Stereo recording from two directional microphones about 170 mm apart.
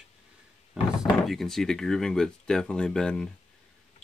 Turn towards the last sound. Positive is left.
turn(degrees=5)  # may be behind; listen again after turning